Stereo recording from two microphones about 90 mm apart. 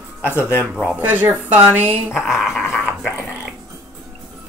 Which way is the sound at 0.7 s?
Centre (ahead or behind).